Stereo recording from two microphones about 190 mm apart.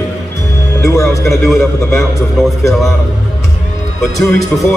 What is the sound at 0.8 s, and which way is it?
Speech, 15° left (ahead or behind).